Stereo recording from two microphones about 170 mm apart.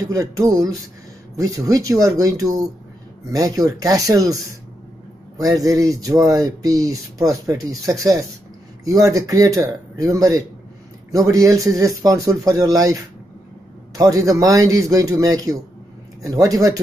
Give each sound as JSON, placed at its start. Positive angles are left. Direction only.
{"t": 0.0, "sound": "speech", "side_deg": -20}